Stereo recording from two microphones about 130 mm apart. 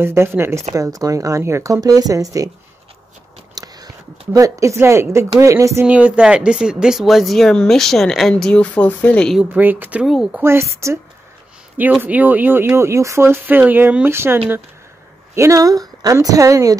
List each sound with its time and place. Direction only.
0.0 s speech: 20° right (ahead or behind)
3.5 s speech: 30° right (ahead or behind)
5.9 s speech: 10° right (ahead or behind); by 9.4 s 5° left (ahead or behind)
9.4 s speech: 15° right (ahead or behind)
10.4 s speech: 20° right (ahead or behind)
12.0 s speech: 15° right (ahead or behind)